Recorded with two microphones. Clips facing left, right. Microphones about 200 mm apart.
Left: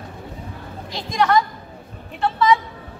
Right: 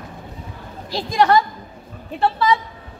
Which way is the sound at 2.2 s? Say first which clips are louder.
Even; 35° right (ahead or behind).